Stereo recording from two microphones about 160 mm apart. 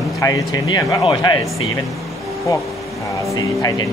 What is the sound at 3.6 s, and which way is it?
Speech, 25° left (ahead or behind).